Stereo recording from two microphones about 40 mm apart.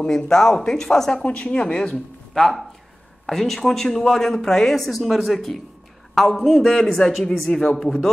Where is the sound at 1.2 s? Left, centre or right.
Left.